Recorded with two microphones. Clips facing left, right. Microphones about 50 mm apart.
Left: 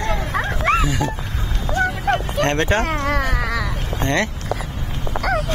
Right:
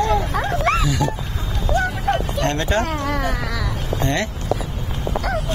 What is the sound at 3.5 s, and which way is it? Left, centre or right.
Cat, left.